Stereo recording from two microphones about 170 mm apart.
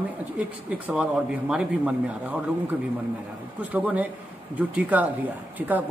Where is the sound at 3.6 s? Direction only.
10° right (ahead or behind).